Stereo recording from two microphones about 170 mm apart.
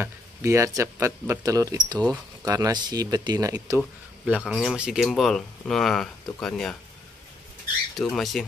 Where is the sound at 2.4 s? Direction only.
20° right (ahead or behind).